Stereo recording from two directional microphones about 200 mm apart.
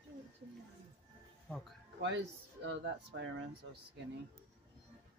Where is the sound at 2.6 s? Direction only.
65° right (ahead or behind).